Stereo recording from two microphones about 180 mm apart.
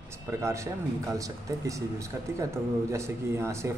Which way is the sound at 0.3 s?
15° right (ahead or behind).